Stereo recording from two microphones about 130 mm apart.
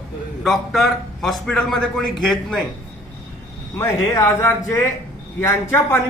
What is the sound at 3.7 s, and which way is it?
Speech, 25° left (ahead or behind).